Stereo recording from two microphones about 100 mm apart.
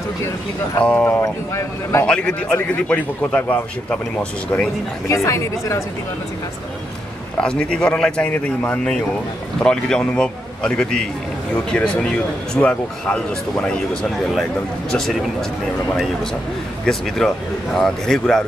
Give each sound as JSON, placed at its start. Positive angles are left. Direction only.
{"t": 0.8, "sound": "a man's voice", "side_deg": 15}
{"t": 1.2, "sound": "speech", "side_deg": 30}
{"t": 2.0, "sound": "a man's voice", "side_deg": 10}
{"t": 5.0, "sound": "speech", "side_deg": 30}
{"t": 7.3, "sound": "a man's voice", "side_deg": 10}
{"t": 14.9, "sound": "speech", "side_deg": 5}
{"t": 17.2, "sound": "speech", "side_deg": 5}